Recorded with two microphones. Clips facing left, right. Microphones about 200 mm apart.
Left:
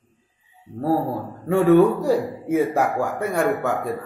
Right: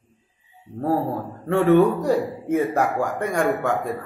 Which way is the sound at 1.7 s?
10° left (ahead or behind).